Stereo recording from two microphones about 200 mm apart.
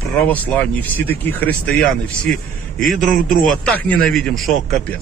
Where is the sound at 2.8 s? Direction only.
Centre (ahead or behind).